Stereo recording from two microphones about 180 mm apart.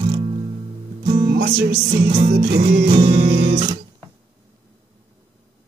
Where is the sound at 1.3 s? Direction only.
60° right (ahead or behind).